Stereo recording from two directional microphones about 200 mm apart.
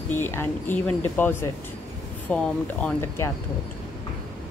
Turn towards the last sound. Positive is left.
turn(degrees=10)  # may be behind; listen again after turning